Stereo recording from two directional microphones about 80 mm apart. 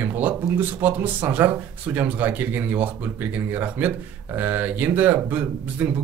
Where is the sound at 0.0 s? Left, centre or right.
Right.